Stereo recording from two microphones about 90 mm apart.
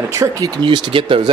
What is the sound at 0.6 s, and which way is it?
Speech, 60° right (ahead or behind).